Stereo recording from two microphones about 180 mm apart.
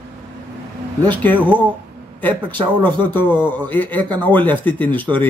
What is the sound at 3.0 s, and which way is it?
A man's voice, 10° left (ahead or behind).